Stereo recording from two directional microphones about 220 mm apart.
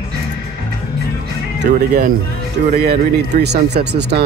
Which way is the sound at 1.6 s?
45° right (ahead or behind).